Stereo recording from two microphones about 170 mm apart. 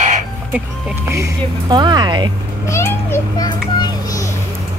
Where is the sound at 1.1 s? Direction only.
20° right (ahead or behind).